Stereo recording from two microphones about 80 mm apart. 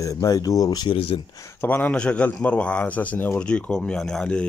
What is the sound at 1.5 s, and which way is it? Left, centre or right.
A man's voice, left.